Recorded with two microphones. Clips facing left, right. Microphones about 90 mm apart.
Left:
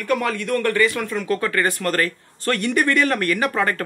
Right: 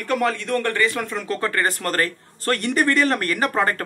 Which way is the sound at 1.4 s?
40° right (ahead or behind).